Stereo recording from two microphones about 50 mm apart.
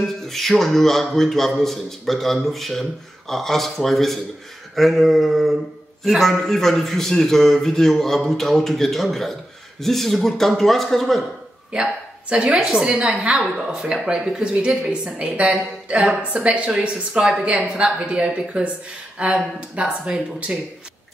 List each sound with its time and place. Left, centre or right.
0.3 s a man's voice: centre
11.7 s a woman's voice: centre